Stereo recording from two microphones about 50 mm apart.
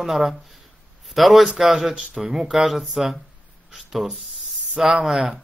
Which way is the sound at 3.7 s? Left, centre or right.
Centre.